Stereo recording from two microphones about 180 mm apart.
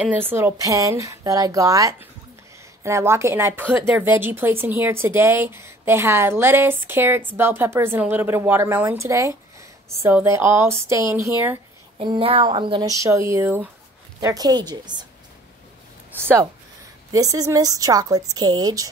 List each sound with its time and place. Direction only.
0.0 s speech: 10° right (ahead or behind)
12.0 s a woman's voice: 30° right (ahead or behind)
13.0 s a woman's voice: 15° right (ahead or behind)
16.2 s a woman's voice: 15° right (ahead or behind)